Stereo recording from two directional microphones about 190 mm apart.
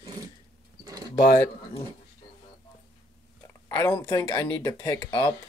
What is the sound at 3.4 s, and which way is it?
Speech, 15° left (ahead or behind).